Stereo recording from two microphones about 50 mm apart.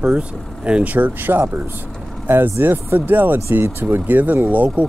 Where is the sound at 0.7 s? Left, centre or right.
Right.